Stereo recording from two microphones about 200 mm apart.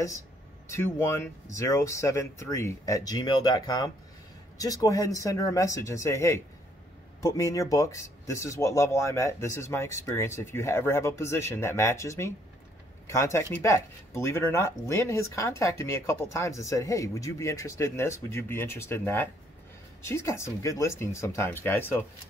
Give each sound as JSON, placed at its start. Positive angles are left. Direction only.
{"t": 0.7, "sound": "speech", "side_deg": 10}